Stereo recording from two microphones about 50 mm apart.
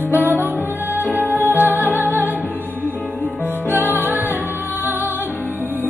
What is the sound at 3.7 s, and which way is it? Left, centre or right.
Music, right.